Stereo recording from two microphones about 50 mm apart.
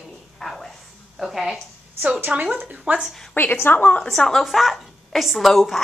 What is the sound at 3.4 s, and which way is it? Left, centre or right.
Speech, left.